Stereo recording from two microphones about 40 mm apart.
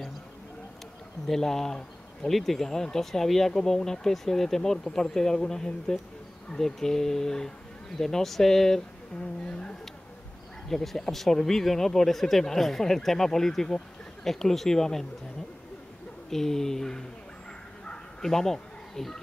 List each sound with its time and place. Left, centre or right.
1.2 s speech: centre
9.5 s a sound: left
10.7 s speech: centre
16.3 s speech: centre
18.2 s speech: centre